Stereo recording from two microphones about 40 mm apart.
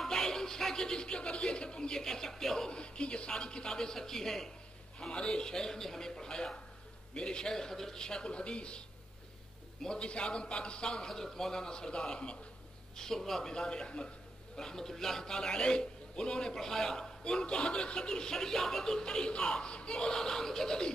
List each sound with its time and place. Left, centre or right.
0.0 s a sound: centre
2.8 s a man's voice: left
5.1 s a man's voice: left
9.8 s a man's voice: left
12.9 s a man's voice: centre